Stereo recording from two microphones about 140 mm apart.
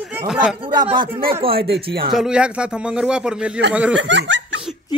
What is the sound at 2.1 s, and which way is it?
Speech, 5° right (ahead or behind).